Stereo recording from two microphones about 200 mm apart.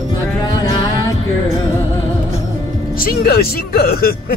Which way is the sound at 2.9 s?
50° left (ahead or behind).